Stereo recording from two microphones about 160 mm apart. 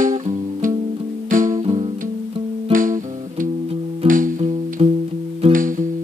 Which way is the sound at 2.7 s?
55° right (ahead or behind).